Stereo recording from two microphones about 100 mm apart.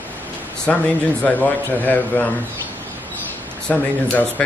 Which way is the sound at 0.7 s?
10° left (ahead or behind).